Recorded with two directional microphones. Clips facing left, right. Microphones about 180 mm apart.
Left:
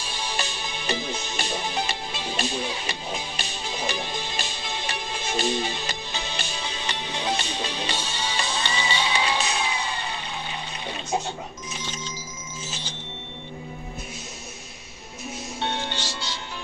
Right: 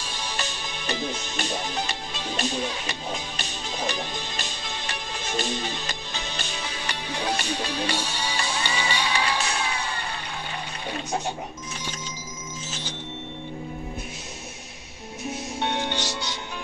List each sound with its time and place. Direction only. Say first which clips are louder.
0.0 s music: left 1 dB; 10° left (ahead or behind)
7.3 s music: right 2 dB; 10° right (ahead or behind)
9.0 s music: left 1 dB; 20° left (ahead or behind)
15.6 s music: right 2 dB; 15° right (ahead or behind)